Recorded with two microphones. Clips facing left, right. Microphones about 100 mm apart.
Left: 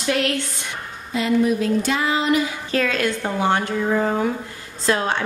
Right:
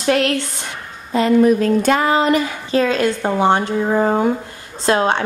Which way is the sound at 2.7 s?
25° right (ahead or behind).